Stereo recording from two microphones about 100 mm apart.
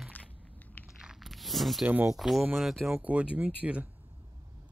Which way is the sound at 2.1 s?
Centre (ahead or behind).